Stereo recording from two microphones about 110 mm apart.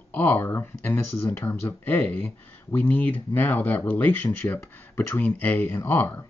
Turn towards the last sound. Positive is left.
turn(degrees=20)  # may be behind; listen again after turning